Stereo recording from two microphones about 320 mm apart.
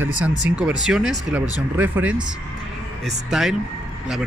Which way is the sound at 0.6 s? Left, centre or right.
Centre.